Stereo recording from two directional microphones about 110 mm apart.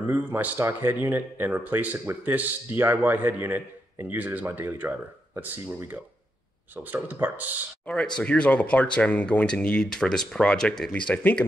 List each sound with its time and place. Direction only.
0.1 s speech: 20° right (ahead or behind)
7.8 s speech: 5° left (ahead or behind)